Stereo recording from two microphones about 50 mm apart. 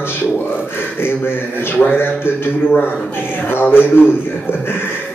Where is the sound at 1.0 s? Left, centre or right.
Left.